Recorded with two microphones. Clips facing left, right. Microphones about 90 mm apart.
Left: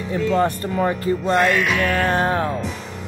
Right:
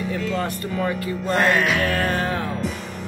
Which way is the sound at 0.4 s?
30° left (ahead or behind).